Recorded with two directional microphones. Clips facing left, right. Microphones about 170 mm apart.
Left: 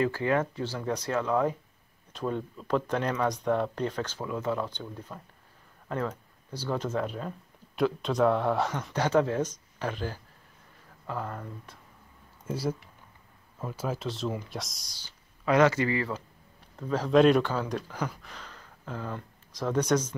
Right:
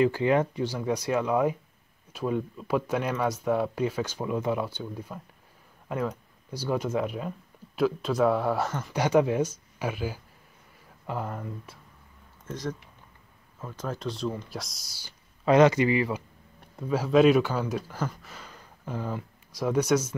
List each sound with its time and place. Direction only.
0.0 s speech: 20° right (ahead or behind); by 8.9 s centre (ahead or behind)
8.9 s speech: 10° right (ahead or behind)
12.4 s speech: 10° left (ahead or behind); by 15.1 s 10° right (ahead or behind)
15.4 s speech: 20° right (ahead or behind)